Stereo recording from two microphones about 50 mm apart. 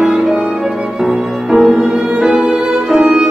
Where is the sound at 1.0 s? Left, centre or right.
Centre.